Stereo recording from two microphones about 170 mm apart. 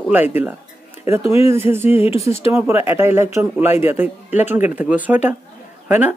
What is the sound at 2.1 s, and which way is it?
Speech, 35° left (ahead or behind).